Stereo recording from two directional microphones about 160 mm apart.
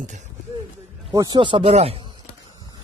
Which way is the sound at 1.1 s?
25° right (ahead or behind).